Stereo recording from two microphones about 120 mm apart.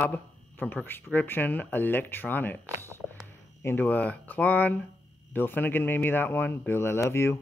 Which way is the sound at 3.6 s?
15° left (ahead or behind).